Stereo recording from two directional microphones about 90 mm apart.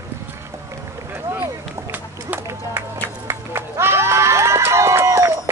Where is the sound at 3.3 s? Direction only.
30° right (ahead or behind).